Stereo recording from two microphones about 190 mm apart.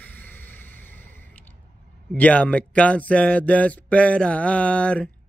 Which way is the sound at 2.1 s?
5° left (ahead or behind).